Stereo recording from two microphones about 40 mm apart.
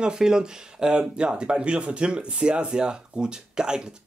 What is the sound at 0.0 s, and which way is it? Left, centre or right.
Speech, centre.